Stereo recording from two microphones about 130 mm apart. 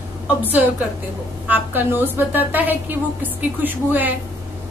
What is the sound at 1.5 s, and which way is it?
A woman's voice, 15° right (ahead or behind).